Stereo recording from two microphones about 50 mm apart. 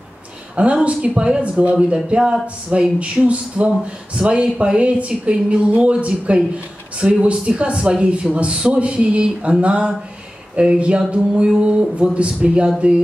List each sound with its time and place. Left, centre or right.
0.6 s speech: right